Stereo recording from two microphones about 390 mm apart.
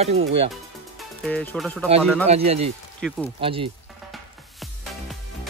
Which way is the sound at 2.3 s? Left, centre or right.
Centre.